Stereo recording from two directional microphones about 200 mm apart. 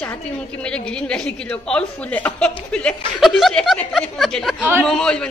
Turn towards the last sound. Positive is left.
turn(degrees=5)  # may be behind; listen again after turning